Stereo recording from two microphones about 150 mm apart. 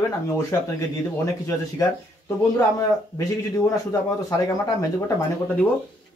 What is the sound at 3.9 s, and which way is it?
Speech, 20° left (ahead or behind).